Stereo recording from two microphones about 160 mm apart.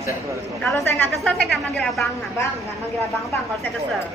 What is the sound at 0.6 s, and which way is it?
A woman's voice, centre (ahead or behind).